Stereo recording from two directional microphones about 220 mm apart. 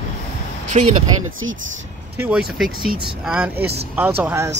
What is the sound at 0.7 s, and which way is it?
Speech, 30° right (ahead or behind).